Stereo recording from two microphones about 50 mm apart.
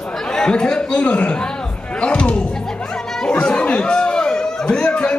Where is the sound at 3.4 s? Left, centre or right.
Left.